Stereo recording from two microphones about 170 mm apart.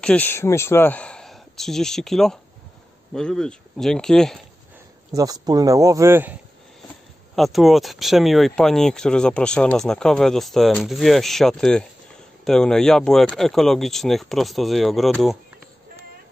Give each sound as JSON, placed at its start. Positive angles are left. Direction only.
{"t": 0.0, "sound": "speech", "side_deg": 10}
{"t": 5.1, "sound": "speech", "side_deg": -20}
{"t": 7.3, "sound": "speech", "side_deg": 0}